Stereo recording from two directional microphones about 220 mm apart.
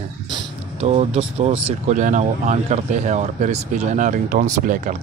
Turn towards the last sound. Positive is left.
turn(degrees=-35)  # may be behind; listen again after turning